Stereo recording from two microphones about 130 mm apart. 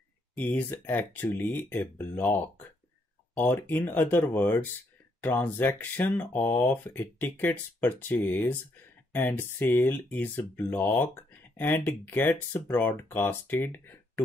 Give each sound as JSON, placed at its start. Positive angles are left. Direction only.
{"t": 0.4, "sound": "speech", "side_deg": 15}